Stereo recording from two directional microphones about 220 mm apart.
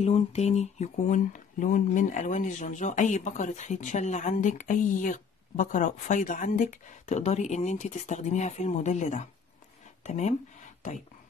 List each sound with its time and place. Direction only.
0.0 s speech: 30° left (ahead or behind)